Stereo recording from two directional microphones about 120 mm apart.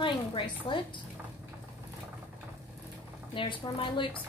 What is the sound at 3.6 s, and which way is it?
Speech, 40° left (ahead or behind).